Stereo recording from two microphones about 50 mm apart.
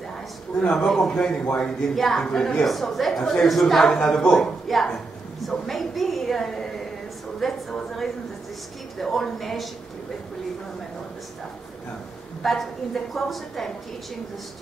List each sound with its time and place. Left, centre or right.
0.6 s speech: left
0.8 s speech: centre
1.2 s a woman's voice: centre
4.4 s a woman's voice: centre
12.4 s a woman's voice: centre